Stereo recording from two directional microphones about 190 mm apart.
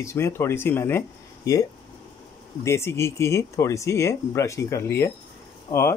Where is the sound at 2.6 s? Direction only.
15° left (ahead or behind).